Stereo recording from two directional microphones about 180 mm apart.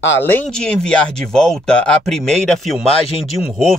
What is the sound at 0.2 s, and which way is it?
Speech, 10° left (ahead or behind).